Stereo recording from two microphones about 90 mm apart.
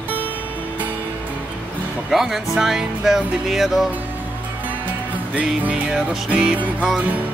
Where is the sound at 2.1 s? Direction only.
5° right (ahead or behind).